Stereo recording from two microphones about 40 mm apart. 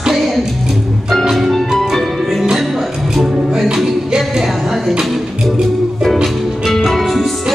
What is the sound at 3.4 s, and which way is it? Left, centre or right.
Music, centre.